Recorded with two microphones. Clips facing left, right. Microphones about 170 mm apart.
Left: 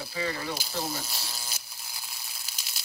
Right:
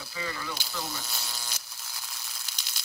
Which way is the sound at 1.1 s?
Centre (ahead or behind).